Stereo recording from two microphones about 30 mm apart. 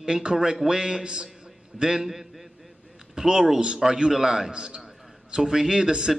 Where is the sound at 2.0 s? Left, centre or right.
Centre.